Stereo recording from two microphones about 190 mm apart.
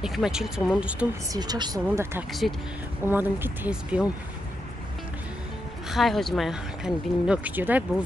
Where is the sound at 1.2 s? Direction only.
20° right (ahead or behind).